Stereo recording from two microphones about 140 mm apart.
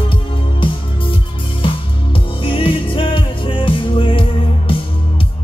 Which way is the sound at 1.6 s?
40° left (ahead or behind).